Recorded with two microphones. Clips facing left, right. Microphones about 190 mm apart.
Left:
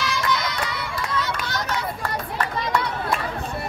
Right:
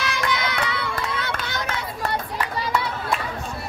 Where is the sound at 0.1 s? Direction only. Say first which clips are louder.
Even; 60° right (ahead or behind).